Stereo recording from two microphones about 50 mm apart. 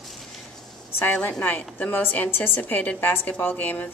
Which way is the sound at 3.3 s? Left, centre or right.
Left.